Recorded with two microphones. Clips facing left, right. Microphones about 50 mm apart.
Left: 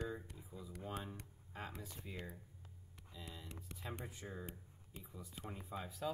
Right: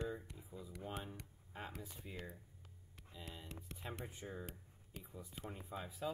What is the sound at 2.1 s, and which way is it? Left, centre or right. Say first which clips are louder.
Speech: left 1 dB; centre.